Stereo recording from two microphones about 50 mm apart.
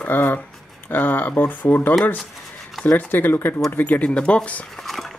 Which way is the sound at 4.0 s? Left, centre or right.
Left.